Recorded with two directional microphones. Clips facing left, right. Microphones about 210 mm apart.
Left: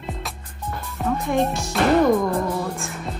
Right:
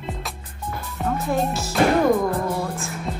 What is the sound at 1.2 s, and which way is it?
Speech, centre (ahead or behind).